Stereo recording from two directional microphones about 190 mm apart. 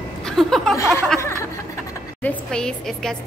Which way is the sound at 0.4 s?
Centre (ahead or behind).